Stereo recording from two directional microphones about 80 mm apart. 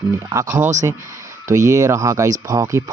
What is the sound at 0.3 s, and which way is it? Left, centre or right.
Speech, right.